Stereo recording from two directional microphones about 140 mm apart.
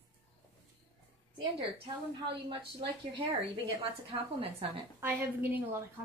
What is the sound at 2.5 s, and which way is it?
A woman's voice, 40° right (ahead or behind).